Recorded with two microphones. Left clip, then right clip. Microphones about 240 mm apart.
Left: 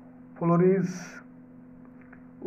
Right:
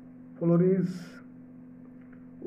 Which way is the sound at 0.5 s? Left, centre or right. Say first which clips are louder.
Left 3 dB; centre.